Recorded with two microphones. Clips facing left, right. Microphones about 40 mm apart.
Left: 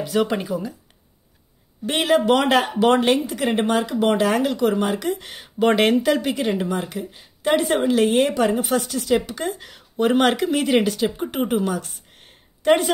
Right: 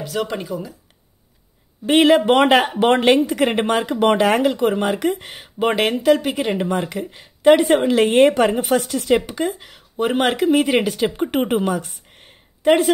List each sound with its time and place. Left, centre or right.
0.0 s speech: centre
2.0 s speech: right
5.2 s speech: centre
6.5 s speech: right
9.4 s speech: centre
11.1 s speech: right
12.6 s speech: centre